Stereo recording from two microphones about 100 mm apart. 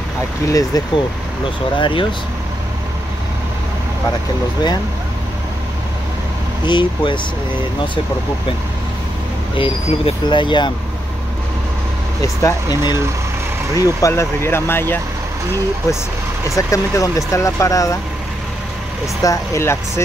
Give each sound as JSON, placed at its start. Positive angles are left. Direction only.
{"t": 0.5, "sound": "speech", "side_deg": 35}
{"t": 1.8, "sound": "speech", "side_deg": 55}
{"t": 6.6, "sound": "speech", "side_deg": 50}
{"t": 9.6, "sound": "speech", "side_deg": 75}
{"t": 10.2, "sound": "speech", "side_deg": 50}
{"t": 12.2, "sound": "speech", "side_deg": 30}
{"t": 13.7, "sound": "speech", "side_deg": 35}
{"t": 16.5, "sound": "speech", "side_deg": 35}
{"t": 19.2, "sound": "speech", "side_deg": 30}